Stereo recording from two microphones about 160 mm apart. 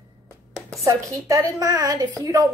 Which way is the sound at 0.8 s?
20° right (ahead or behind).